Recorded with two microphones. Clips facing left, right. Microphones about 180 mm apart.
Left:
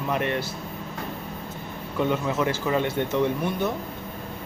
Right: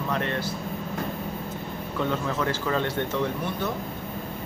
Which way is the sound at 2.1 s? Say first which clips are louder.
Left 2 dB; 10° left (ahead or behind).